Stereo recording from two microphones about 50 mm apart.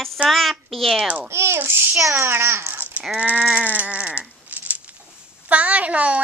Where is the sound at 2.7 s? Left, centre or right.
Right.